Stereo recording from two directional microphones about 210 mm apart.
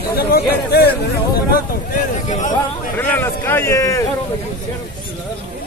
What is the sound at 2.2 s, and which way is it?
Speech, 35° left (ahead or behind).